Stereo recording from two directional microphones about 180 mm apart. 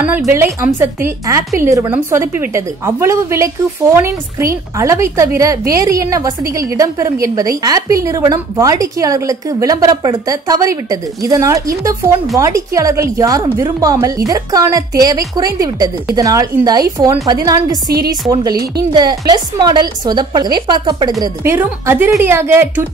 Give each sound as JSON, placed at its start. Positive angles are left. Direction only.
{"t": 0.0, "sound": "a woman's voice", "side_deg": -10}
{"t": 21.2, "sound": "a woman's voice", "side_deg": -15}